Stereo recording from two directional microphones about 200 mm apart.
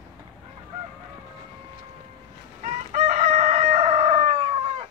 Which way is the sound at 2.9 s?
35° right (ahead or behind).